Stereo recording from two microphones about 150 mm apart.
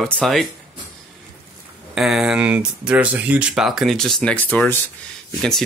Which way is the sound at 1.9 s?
5° right (ahead or behind).